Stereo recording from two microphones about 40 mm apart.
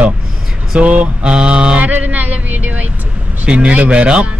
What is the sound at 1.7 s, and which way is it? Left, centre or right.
Speech, right.